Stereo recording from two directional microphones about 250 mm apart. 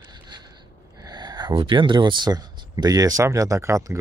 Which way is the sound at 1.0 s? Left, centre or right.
Centre.